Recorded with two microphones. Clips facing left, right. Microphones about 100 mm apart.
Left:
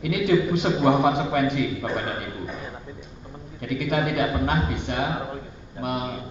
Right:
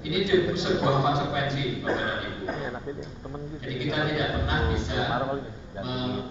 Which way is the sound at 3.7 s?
60° left (ahead or behind).